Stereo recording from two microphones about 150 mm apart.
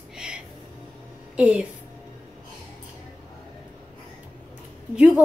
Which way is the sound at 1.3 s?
10° right (ahead or behind).